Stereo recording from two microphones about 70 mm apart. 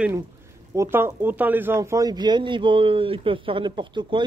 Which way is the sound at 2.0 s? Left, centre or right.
Right.